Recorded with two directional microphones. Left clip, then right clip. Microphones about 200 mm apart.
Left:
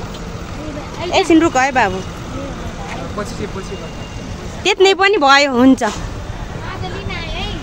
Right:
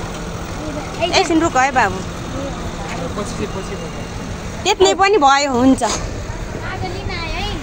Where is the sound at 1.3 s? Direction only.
30° left (ahead or behind).